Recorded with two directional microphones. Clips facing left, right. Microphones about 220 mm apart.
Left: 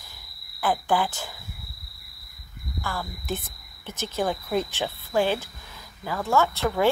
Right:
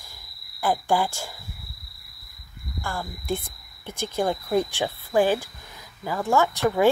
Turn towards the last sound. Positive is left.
turn(degrees=-15)  # may be behind; listen again after turning